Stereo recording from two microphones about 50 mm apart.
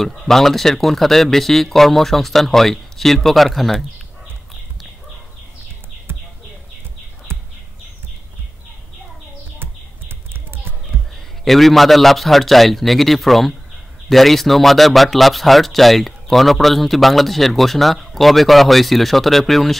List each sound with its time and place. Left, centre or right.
0.0 s a man's voice: centre
6.1 s bird: right
7.3 s bird: right
9.6 s a sound: right
11.4 s a man's voice: centre